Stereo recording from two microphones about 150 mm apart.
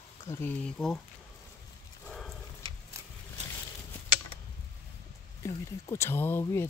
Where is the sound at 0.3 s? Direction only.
15° left (ahead or behind).